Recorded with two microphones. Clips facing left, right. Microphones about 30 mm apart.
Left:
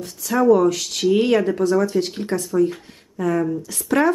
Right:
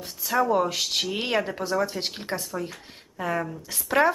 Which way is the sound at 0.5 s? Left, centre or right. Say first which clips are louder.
Left 8 dB; centre.